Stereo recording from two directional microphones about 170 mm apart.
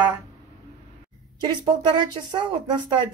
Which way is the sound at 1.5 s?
25° right (ahead or behind).